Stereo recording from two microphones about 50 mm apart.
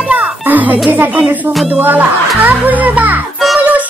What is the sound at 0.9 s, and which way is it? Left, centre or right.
Speech, right.